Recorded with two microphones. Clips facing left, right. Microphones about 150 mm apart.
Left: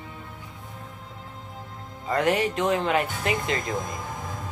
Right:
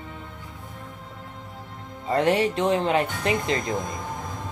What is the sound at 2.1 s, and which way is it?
Music, 30° right (ahead or behind).